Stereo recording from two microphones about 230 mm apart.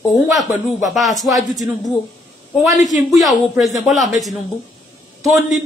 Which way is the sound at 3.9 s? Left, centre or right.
Left.